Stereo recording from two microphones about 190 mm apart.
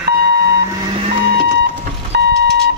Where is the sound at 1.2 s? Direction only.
50° right (ahead or behind).